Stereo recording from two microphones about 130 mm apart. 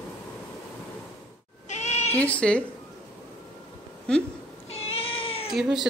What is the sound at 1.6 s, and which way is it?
Cat, 60° left (ahead or behind).